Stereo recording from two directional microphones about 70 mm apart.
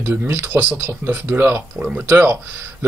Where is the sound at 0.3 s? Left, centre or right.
Right.